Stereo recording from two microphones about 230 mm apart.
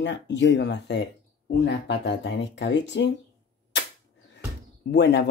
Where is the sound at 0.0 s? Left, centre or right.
Left.